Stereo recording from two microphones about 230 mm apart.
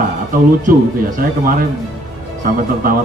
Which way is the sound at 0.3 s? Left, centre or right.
Right.